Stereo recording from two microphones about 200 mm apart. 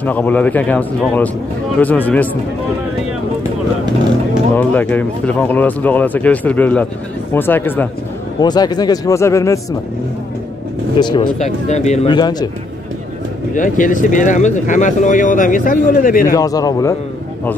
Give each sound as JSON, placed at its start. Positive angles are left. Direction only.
{"t": 0.0, "sound": "speech", "side_deg": 10}
{"t": 4.6, "sound": "speech", "side_deg": 10}
{"t": 8.4, "sound": "speech", "side_deg": 20}
{"t": 11.0, "sound": "a man's voice", "side_deg": 20}
{"t": 11.3, "sound": "speech", "side_deg": 35}
{"t": 12.1, "sound": "a man's voice", "side_deg": 20}
{"t": 13.6, "sound": "speech", "side_deg": 40}
{"t": 16.3, "sound": "speech", "side_deg": 20}